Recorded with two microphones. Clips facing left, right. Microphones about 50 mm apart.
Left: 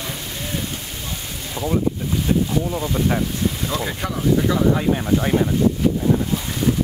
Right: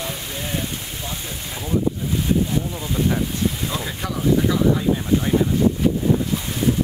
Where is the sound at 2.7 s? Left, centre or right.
Left.